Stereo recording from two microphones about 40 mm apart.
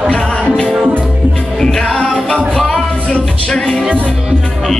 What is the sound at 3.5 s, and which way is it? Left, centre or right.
Music, centre.